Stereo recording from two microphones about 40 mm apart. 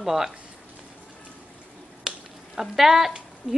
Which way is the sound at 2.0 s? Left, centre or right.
Centre.